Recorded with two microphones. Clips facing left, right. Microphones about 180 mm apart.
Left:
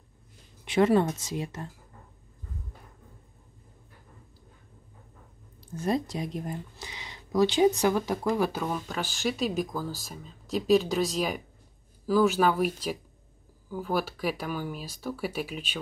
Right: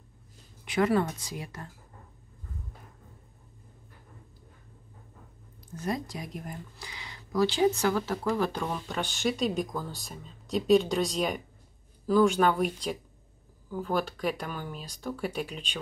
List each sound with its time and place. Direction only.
0.7 s speech: 25° left (ahead or behind)
5.8 s speech: 25° left (ahead or behind); by 15.8 s 5° left (ahead or behind)